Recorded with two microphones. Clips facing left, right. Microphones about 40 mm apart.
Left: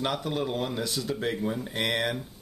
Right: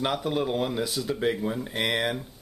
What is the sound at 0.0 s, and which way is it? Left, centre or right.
Speech, centre.